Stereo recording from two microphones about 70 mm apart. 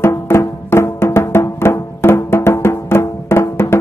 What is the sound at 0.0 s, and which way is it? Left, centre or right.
Music, left.